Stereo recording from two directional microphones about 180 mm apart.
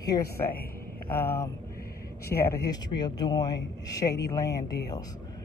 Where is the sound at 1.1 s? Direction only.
15° left (ahead or behind).